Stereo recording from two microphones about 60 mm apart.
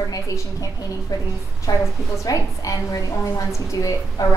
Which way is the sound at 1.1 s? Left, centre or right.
Left.